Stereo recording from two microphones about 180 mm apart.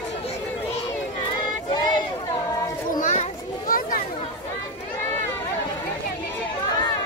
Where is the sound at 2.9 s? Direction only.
45° left (ahead or behind).